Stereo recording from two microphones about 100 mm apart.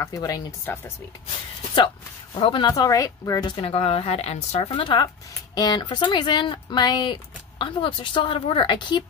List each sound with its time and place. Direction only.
0.0 s speech: 35° left (ahead or behind)
0.7 s speech: 25° left (ahead or behind)
2.3 s speech: 55° left (ahead or behind)
2.7 s speech: 35° left (ahead or behind)
3.6 s speech: 75° left (ahead or behind); by 9.0 s 50° left (ahead or behind)